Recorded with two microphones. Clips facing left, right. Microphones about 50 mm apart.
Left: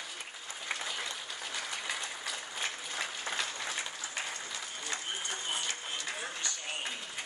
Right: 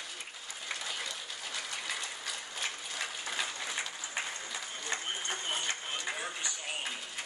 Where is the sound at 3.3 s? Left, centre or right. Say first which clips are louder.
Even; centre.